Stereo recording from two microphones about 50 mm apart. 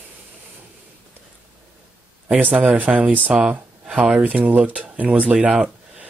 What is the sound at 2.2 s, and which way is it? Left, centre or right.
Speech, right.